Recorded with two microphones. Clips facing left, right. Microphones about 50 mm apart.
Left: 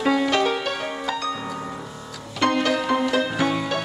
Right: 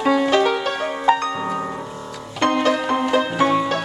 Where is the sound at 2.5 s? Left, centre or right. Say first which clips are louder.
Right 3 dB; centre.